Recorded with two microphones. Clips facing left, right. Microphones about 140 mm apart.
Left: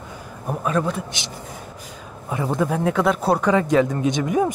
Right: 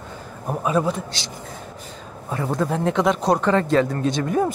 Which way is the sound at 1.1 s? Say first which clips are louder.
Even; 20° left (ahead or behind).